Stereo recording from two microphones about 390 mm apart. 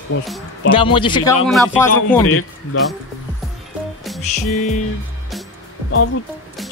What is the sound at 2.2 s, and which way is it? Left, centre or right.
Speech, left.